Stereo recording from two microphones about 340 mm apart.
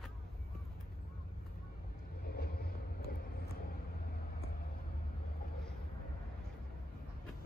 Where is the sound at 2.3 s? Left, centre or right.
Left.